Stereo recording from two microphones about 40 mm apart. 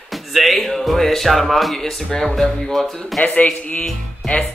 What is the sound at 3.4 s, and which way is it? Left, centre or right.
Speech, left.